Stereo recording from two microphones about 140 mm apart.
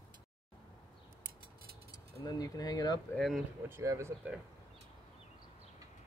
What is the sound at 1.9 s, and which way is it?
Speech, 30° left (ahead or behind).